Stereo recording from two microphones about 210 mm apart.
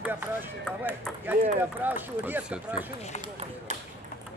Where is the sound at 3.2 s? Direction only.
30° right (ahead or behind).